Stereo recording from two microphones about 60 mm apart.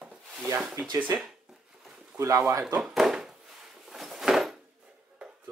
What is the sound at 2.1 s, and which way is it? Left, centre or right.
Speech, right.